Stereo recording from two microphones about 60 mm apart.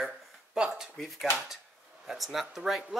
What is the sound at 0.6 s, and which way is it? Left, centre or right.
Speech, centre.